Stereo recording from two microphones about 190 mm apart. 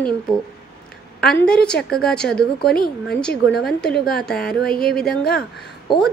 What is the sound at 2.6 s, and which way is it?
Speech, 50° left (ahead or behind).